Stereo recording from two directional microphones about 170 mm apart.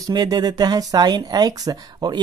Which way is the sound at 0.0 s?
20° right (ahead or behind).